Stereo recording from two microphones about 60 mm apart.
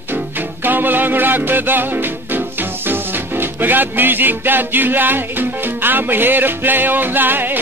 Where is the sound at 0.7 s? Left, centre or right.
Right.